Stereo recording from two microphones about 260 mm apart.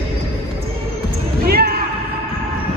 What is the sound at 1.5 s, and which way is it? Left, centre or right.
Basketball bounce, right.